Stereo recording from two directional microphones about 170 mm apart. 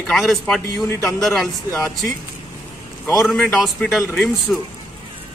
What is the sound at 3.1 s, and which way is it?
A man's voice, centre (ahead or behind).